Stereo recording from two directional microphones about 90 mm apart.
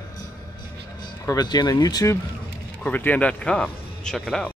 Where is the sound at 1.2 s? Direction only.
45° left (ahead or behind).